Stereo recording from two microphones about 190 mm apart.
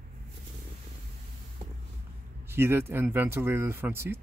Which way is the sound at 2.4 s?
10° right (ahead or behind).